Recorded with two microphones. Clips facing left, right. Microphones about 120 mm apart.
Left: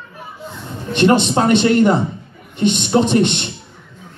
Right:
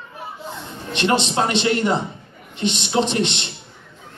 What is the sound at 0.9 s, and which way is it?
A man's voice, 50° left (ahead or behind).